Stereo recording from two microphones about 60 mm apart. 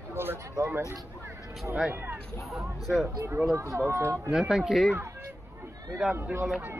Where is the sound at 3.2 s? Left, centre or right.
Right.